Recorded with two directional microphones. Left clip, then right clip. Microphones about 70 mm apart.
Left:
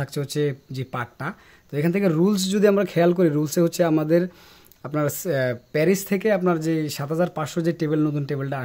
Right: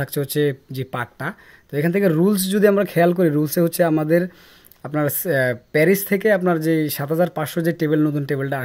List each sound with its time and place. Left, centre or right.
0.0 s speech: right
0.7 s speech: right
2.3 s speech: centre
5.2 s speech: right